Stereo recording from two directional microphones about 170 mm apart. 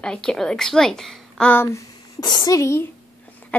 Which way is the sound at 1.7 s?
25° left (ahead or behind).